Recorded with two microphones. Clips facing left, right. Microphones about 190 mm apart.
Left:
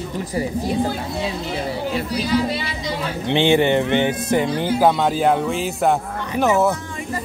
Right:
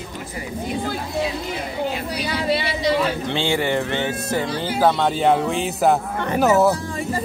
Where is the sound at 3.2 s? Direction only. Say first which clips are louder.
Left 5 dB; 20° left (ahead or behind).